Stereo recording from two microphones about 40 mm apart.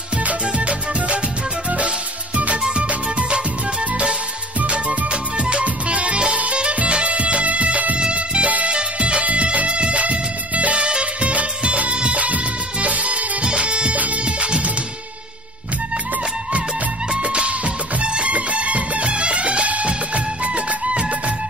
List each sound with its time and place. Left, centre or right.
0.5 s music: right
2.3 s music: right
4.6 s music: right
13.9 s music: right
17.2 s music: right